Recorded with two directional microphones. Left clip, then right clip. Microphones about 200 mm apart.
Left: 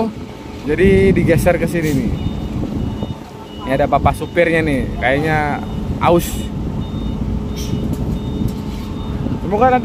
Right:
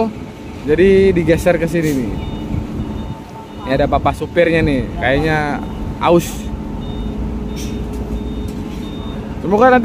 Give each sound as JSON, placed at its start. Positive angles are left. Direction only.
{"t": 0.7, "sound": "a man's voice", "side_deg": 0}
{"t": 3.6, "sound": "a man's voice", "side_deg": -5}
{"t": 9.5, "sound": "speech", "side_deg": -20}